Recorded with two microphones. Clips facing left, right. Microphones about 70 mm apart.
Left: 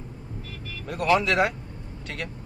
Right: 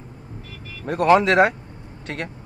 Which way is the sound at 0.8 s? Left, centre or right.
Right.